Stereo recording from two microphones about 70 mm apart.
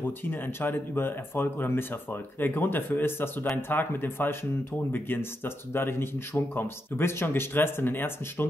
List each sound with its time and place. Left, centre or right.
0.0 s speech: left